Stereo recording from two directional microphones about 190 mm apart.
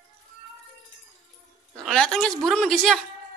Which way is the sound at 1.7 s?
Centre (ahead or behind).